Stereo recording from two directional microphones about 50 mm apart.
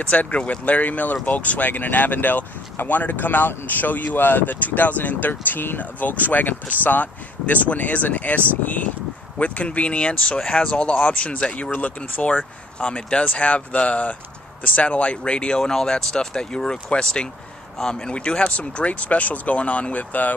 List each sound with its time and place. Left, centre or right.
0.0 s speech: left
12.7 s speech: left